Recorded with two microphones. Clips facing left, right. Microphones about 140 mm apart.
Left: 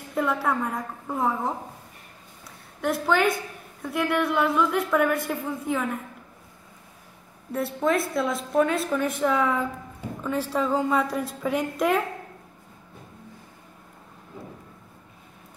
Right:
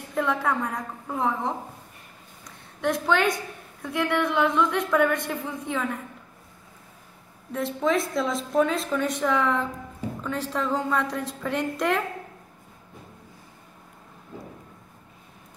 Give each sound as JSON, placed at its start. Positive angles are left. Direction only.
{"t": 0.1, "sound": "speech", "side_deg": 5}
{"t": 2.8, "sound": "speech", "side_deg": 5}
{"t": 7.5, "sound": "a woman's voice", "side_deg": 5}